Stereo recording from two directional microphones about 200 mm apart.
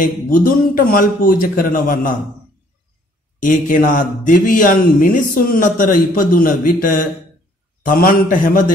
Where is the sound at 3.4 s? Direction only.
40° left (ahead or behind).